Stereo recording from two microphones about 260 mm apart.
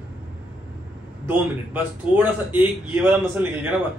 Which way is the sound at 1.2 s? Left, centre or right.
Centre.